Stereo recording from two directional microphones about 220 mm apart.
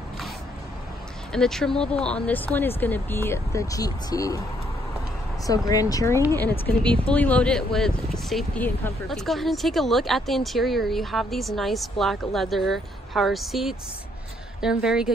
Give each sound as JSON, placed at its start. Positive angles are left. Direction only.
{"t": 1.3, "sound": "speech", "side_deg": 5}
{"t": 5.5, "sound": "speech", "side_deg": 15}